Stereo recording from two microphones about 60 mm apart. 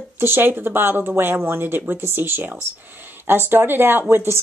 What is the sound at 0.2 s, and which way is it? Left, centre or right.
A woman's voice, right.